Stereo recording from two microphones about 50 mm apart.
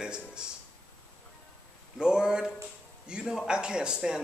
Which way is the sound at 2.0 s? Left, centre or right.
Centre.